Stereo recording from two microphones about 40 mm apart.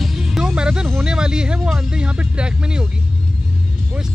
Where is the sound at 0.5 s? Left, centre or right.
Right.